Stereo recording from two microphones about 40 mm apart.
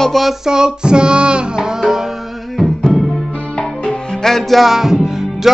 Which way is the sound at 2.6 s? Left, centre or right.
Centre.